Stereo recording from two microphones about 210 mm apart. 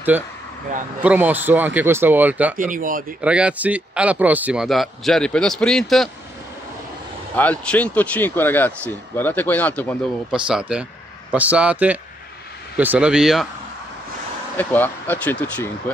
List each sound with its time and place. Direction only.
0.1 s speech: 10° right (ahead or behind)
2.7 s speech: 40° right (ahead or behind)
3.2 s speech: 5° right (ahead or behind)
7.3 s speech: 5° left (ahead or behind)
14.6 s speech: 10° left (ahead or behind)